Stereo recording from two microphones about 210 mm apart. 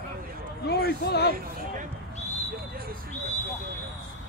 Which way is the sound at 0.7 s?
50° left (ahead or behind).